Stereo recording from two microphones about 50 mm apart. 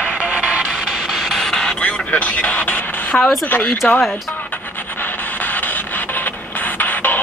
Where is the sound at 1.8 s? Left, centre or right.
Left.